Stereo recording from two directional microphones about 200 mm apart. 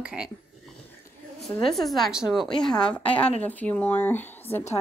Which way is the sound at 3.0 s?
30° left (ahead or behind).